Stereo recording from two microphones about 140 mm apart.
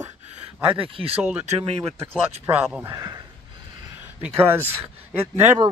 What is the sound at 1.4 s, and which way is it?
Speech, 45° right (ahead or behind).